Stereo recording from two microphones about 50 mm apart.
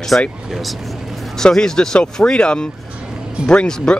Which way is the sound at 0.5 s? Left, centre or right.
Centre.